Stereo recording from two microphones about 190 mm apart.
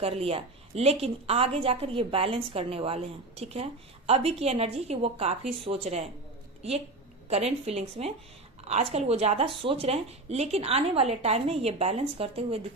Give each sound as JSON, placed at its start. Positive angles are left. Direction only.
{"t": 0.0, "sound": "a woman's voice", "side_deg": -30}
{"t": 7.2, "sound": "a woman's voice", "side_deg": -35}